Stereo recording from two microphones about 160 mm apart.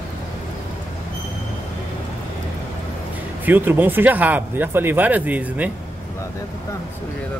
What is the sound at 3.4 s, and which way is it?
Speech, 10° right (ahead or behind).